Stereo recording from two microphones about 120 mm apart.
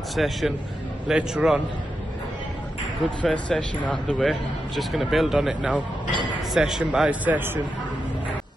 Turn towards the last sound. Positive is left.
turn(degrees=-15)  # may be behind; listen again after turning